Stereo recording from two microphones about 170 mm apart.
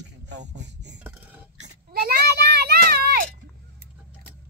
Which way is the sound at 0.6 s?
90° right.